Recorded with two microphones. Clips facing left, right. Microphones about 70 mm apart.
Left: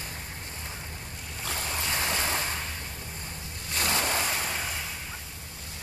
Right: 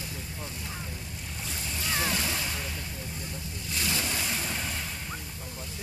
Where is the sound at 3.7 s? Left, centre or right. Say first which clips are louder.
Left 4 dB; left.